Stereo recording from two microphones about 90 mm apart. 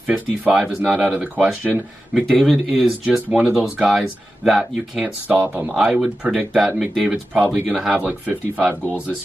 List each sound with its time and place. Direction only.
0.0 s speech: 10° right (ahead or behind)
2.2 s speech: 5° left (ahead or behind)
5.0 s speech: 15° right (ahead or behind)
5.7 s speech: 5° right (ahead or behind)
8.1 s speech: 20° right (ahead or behind)